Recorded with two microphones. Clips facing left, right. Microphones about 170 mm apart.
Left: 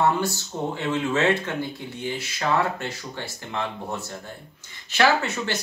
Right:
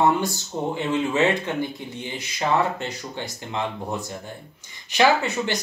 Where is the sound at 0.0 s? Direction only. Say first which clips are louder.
Right 2 dB; 15° right (ahead or behind).